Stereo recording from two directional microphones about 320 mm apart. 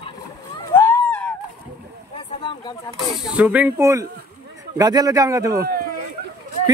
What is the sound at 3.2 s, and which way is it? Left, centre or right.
A man's voice, centre.